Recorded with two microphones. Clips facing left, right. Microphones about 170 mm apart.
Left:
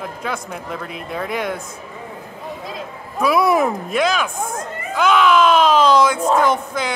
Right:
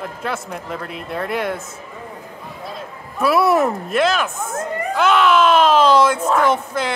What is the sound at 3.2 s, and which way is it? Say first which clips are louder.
A man's voice: even; 5° right (ahead or behind).